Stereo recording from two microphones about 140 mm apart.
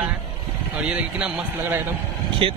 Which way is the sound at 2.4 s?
40° right (ahead or behind).